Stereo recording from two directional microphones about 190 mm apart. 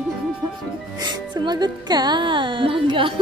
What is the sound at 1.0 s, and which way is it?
Speech, 25° right (ahead or behind).